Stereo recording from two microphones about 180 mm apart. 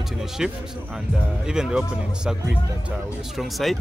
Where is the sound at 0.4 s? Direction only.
5° right (ahead or behind).